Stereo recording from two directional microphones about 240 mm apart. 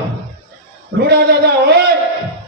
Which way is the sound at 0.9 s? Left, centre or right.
Right.